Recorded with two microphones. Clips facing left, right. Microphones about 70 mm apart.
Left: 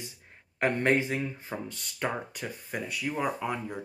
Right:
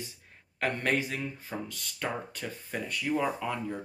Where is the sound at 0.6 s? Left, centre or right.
Left.